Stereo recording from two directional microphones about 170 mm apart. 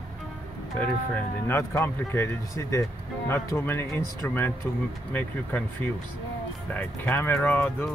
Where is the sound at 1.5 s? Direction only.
15° left (ahead or behind).